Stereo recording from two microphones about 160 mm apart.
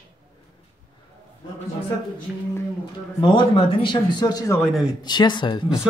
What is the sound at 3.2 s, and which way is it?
Speech, 30° left (ahead or behind).